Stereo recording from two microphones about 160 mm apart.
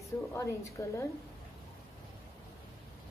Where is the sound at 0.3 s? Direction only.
15° left (ahead or behind).